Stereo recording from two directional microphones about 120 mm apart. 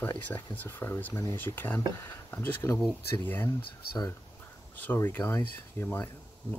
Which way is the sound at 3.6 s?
35° left (ahead or behind).